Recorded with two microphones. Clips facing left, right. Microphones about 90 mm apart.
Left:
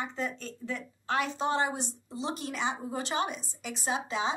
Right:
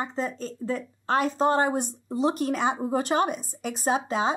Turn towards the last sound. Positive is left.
turn(degrees=-45)  # may be behind; listen again after turning